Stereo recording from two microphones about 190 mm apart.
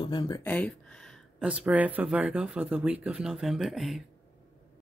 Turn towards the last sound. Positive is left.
turn(degrees=0)  # may be behind; listen again after turning